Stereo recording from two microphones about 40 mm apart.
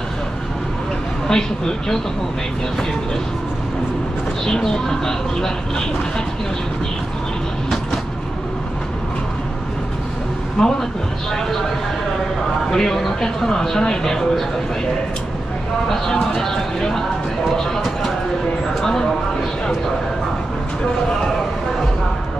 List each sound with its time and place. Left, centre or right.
1.2 s speech: centre
4.5 s speech: centre
10.6 s speech: centre
12.7 s speech: centre
16.3 s speech: centre
18.8 s a sound: centre